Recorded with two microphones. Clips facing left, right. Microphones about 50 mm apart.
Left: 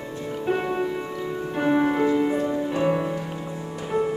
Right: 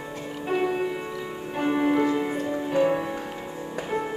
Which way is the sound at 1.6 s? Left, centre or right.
Centre.